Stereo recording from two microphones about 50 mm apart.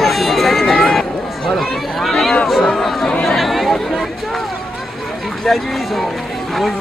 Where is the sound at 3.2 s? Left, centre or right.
Centre.